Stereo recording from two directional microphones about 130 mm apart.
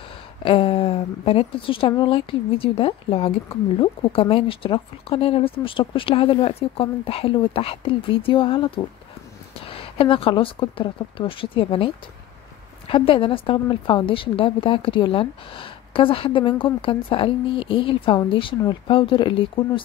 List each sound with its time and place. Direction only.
0.4 s a woman's voice: 45° left (ahead or behind)